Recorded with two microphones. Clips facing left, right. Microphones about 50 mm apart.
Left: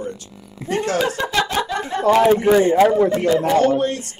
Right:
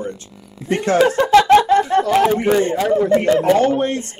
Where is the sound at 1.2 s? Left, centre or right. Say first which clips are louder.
Right 10 dB; right.